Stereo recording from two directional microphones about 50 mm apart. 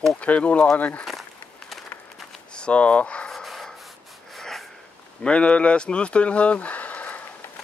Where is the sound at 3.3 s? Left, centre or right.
Centre.